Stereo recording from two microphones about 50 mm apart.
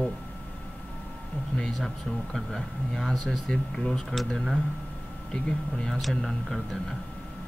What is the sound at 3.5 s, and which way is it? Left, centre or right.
Speech, centre.